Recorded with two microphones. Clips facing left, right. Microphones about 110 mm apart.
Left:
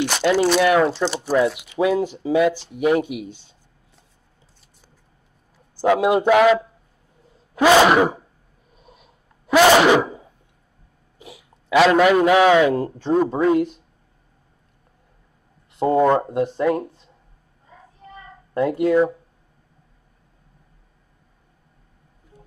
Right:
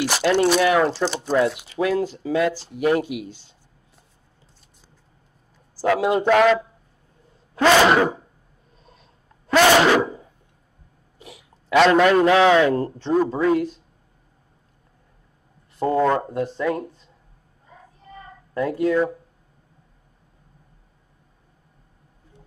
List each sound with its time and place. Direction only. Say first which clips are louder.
0.0 s a man's voice: left 1 dB; centre (ahead or behind); by 2.5 s 15° left (ahead or behind)
2.5 s speech: even; 35° right (ahead or behind)
2.8 s a man's voice: left 1 dB; 15° left (ahead or behind)
5.8 s a man's voice: left 3 dB; 15° left (ahead or behind)
8.7 s sneeze: left 3 dB; 15° left (ahead or behind)
11.1 s a sound: left 1 dB; 15° left (ahead or behind)
11.5 s a man's voice: even; 5° left (ahead or behind); by 13.7 s 20° left (ahead or behind)
15.8 s speech: left 3 dB; 20° left (ahead or behind)
18.5 s speech: left 3 dB; 25° left (ahead or behind)